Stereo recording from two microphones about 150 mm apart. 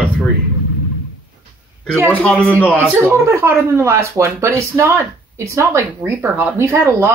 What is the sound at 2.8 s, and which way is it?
Speech, 15° right (ahead or behind).